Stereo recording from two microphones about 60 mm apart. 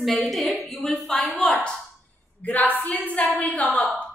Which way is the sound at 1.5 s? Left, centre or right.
Centre.